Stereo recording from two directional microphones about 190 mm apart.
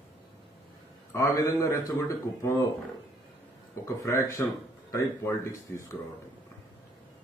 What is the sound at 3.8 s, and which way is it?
Speech, 15° left (ahead or behind).